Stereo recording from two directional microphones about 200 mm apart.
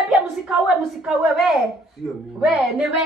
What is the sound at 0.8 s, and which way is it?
A woman's voice, centre (ahead or behind).